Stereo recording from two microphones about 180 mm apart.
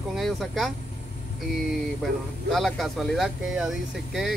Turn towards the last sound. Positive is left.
turn(degrees=0)  # may be behind; listen again after turning